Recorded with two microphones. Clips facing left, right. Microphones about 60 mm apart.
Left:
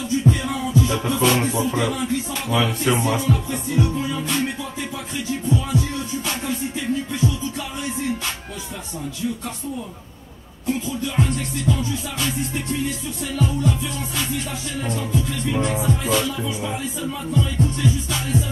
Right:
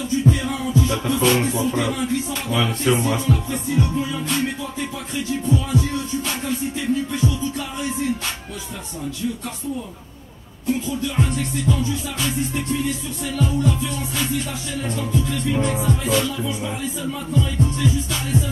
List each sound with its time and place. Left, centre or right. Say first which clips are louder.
0.2 s music: right 1 dB; centre
10.7 s music: right 1 dB; centre